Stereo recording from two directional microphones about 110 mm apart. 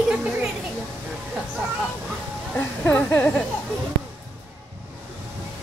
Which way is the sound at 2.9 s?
20° left (ahead or behind).